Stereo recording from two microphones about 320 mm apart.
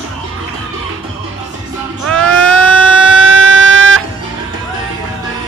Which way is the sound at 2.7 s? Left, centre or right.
Right.